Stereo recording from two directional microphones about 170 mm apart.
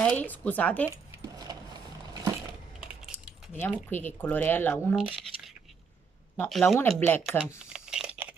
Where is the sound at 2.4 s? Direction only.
5° right (ahead or behind).